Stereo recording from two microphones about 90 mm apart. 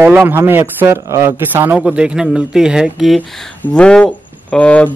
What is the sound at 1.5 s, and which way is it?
Speech, 20° right (ahead or behind).